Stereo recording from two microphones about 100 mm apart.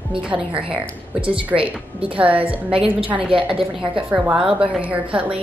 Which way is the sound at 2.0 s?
65° right (ahead or behind).